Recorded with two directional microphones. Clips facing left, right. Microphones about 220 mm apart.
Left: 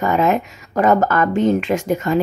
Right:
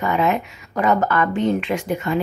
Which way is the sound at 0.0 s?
45° left (ahead or behind).